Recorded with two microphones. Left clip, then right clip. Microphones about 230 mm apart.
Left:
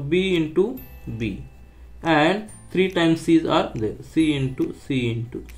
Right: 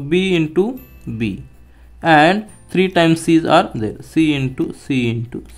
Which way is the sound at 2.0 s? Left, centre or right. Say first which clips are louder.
Right 8 dB; right.